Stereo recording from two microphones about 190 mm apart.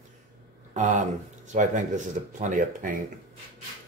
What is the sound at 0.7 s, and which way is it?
Speech, 40° right (ahead or behind).